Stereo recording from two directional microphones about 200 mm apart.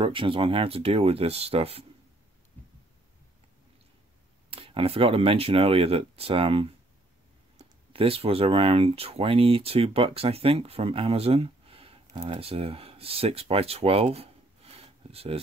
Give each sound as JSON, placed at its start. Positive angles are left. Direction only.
{"t": 0.0, "sound": "speech", "side_deg": -25}
{"t": 4.5, "sound": "speech", "side_deg": -30}